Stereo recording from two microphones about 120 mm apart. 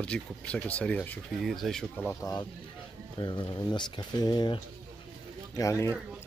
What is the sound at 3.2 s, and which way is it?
Speech, 40° left (ahead or behind).